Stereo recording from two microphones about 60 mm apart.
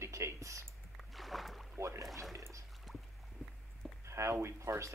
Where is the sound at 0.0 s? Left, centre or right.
Right.